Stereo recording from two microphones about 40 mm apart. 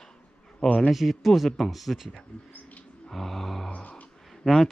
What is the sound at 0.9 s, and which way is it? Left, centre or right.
Speech, centre.